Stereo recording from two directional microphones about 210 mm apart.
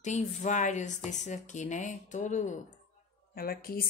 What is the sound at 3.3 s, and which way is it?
Speech, 45° left (ahead or behind).